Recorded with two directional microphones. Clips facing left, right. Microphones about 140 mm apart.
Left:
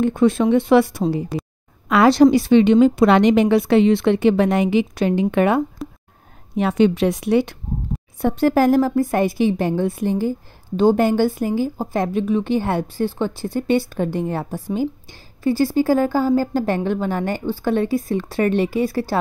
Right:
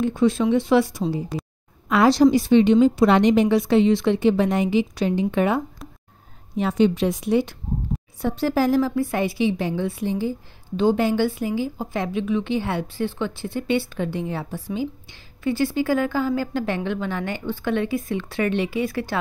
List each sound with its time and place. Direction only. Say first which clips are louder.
0.0 s a woman's voice: left 3 dB; 55° left (ahead or behind)
5.8 s a sound: left 10 dB; centre (ahead or behind)
6.5 s a woman's voice: left 3 dB; 65° left (ahead or behind)
8.2 s a woman's voice: left 5 dB; 55° left (ahead or behind); by 19.1 s 35° left (ahead or behind)